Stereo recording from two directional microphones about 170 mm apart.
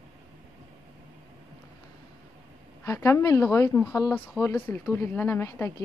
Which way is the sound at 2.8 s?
15° left (ahead or behind).